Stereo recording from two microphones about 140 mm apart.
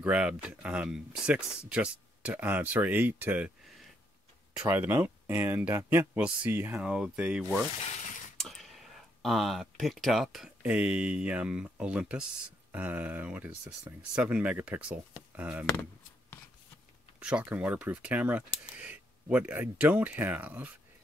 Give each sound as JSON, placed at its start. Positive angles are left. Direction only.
{"t": 0.0, "sound": "speech", "side_deg": -10}
{"t": 4.6, "sound": "speech", "side_deg": -15}
{"t": 7.8, "sound": "a sound", "side_deg": 60}
{"t": 8.4, "sound": "a sound", "side_deg": 0}
{"t": 10.6, "sound": "speech", "side_deg": -10}
{"t": 17.2, "sound": "speech", "side_deg": -5}